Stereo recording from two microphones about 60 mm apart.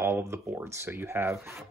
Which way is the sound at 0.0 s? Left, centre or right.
Right.